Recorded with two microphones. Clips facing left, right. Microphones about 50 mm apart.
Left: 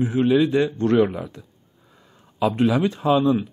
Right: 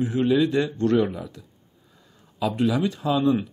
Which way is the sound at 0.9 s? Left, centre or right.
Left.